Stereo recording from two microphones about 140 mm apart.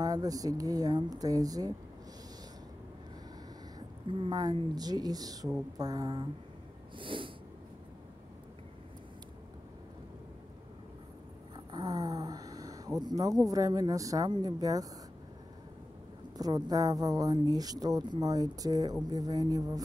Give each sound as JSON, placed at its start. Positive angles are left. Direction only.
{"t": 0.0, "sound": "speech", "side_deg": -25}
{"t": 4.2, "sound": "speech", "side_deg": -30}
{"t": 7.0, "sound": "sneeze", "side_deg": -35}
{"t": 11.5, "sound": "speech", "side_deg": -30}
{"t": 16.3, "sound": "speech", "side_deg": -30}